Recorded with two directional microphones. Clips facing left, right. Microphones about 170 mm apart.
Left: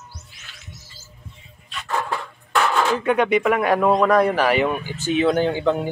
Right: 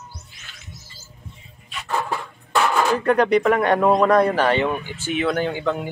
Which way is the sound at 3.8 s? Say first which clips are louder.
Right 1 dB; 10° right (ahead or behind).